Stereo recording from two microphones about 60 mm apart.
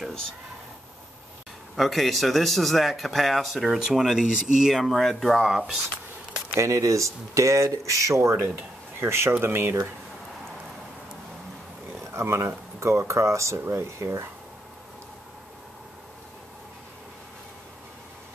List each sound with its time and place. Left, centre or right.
1.8 s a man's voice: centre
6.5 s speech: right
12.0 s speech: right